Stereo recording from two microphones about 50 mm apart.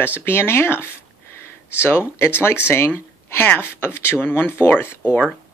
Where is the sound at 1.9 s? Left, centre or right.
Left.